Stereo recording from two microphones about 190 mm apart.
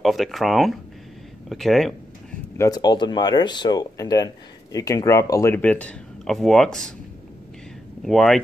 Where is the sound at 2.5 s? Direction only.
20° left (ahead or behind).